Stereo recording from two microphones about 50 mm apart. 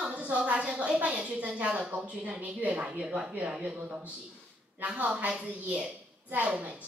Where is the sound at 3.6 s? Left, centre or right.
Right.